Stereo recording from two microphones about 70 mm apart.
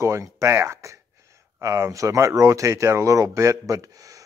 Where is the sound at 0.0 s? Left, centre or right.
Right.